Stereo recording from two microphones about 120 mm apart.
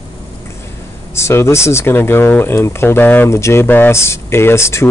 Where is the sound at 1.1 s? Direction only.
20° left (ahead or behind).